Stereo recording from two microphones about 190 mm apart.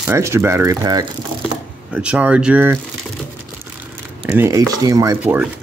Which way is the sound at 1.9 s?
5° right (ahead or behind).